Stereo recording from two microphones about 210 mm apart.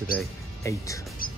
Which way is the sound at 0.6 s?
15° left (ahead or behind).